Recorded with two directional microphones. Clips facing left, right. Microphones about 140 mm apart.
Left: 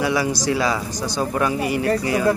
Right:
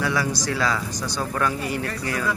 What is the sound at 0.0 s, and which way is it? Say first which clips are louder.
Speech: left 4 dB; 10° left (ahead or behind).